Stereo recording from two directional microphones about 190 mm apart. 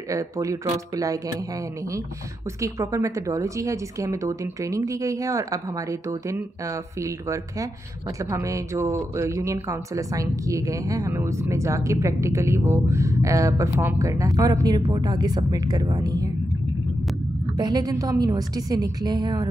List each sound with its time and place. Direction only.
0.1 s speech: 15° right (ahead or behind)
2.6 s speech: 15° right (ahead or behind)
17.6 s a woman's voice: 20° right (ahead or behind)